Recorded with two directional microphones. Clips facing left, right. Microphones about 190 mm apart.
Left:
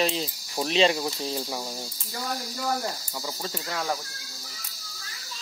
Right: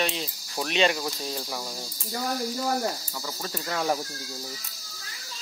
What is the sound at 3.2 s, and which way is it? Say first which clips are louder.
Speech: left 1 dB; 15° left (ahead or behind).